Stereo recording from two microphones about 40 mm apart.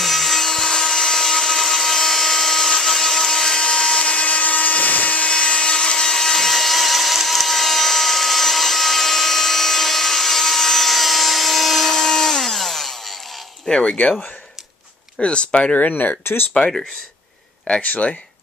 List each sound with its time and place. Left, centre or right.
0.0 s a sound: centre
4.0 s a sound: left
5.3 s tools: centre
13.7 s speech: left
15.2 s speech: left
15.9 s speech: left
16.5 s speech: centre
17.7 s speech: left